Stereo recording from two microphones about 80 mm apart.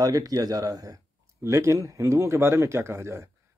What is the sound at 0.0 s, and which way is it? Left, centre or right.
Speech, right.